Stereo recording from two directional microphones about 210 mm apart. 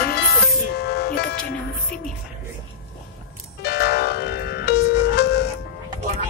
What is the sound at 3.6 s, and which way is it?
Music, 50° left (ahead or behind).